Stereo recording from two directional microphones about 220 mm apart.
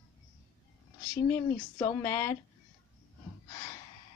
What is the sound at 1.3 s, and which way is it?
Speech, 15° left (ahead or behind).